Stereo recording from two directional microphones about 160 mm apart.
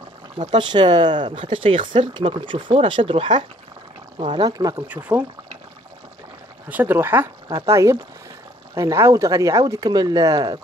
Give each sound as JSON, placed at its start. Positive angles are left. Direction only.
{"t": 0.4, "sound": "speech", "side_deg": -30}
{"t": 4.4, "sound": "speech", "side_deg": -25}
{"t": 4.8, "sound": "speech", "side_deg": -10}
{"t": 6.7, "sound": "speech", "side_deg": -15}